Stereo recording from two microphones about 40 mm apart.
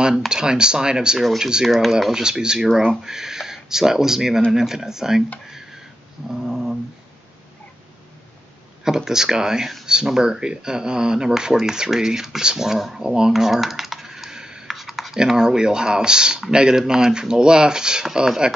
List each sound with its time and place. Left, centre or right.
0.3 s speech: centre
1.7 s speech: centre
2.2 s speech: centre
6.4 s a sound: centre
8.8 s speech: centre
13.0 s speech: centre
13.3 s typing: centre
14.7 s computer keyboard: centre
15.1 s speech: centre